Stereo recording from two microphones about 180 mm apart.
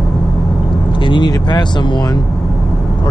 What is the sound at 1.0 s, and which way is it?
Speech, 25° left (ahead or behind).